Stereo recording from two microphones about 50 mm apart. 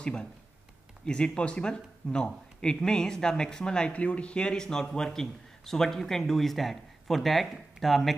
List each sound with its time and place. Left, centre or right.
0.0 s speech: centre